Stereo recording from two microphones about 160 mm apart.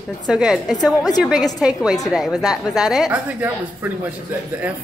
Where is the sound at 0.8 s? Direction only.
25° left (ahead or behind).